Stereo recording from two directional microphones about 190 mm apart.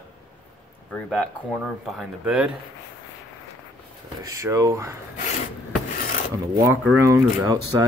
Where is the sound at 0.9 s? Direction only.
5° left (ahead or behind).